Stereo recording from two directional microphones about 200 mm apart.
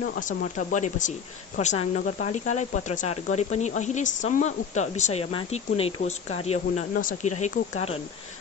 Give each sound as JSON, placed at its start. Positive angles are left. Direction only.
{"t": 0.0, "sound": "speech", "side_deg": 45}